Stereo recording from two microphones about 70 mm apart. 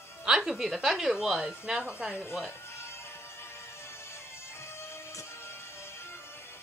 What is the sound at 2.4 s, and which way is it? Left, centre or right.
Music, left.